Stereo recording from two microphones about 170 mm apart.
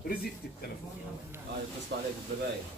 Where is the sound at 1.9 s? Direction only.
90° right.